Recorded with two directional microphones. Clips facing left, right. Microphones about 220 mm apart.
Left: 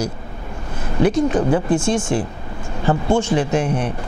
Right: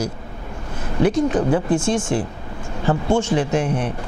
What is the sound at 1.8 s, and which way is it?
Speech, 10° left (ahead or behind).